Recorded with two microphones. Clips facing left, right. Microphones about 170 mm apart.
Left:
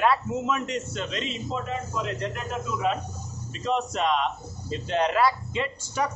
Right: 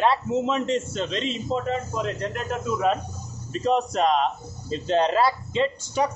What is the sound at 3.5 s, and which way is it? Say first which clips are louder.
A man's voice: right 5 dB; 40° right (ahead or behind).